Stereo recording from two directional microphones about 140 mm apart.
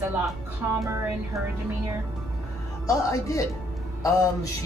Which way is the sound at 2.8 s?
25° left (ahead or behind).